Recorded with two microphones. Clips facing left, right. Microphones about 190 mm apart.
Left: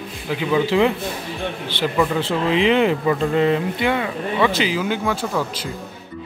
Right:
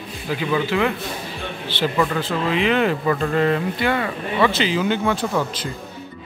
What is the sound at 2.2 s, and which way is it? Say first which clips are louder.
Speech: left 3 dB; 25° left (ahead or behind).